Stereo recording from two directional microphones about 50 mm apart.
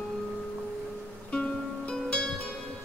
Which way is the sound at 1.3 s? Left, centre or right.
Left.